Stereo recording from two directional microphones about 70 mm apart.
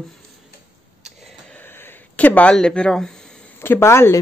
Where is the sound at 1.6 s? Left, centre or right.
Left.